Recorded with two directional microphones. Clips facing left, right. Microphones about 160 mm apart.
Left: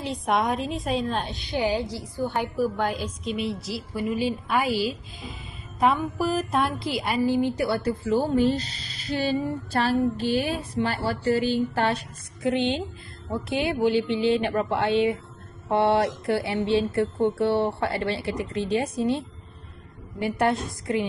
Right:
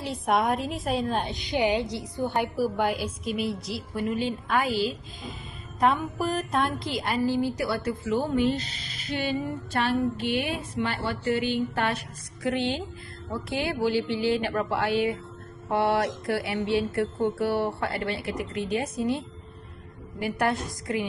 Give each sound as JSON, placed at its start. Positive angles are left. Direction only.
{"t": 0.1, "sound": "a woman's voice", "side_deg": 0}
{"t": 7.5, "sound": "speech", "side_deg": 25}